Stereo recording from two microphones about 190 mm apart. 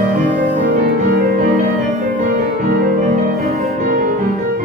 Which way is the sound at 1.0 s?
50° right (ahead or behind).